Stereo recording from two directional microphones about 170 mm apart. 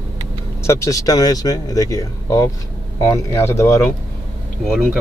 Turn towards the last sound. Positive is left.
turn(degrees=0)  # may be behind; listen again after turning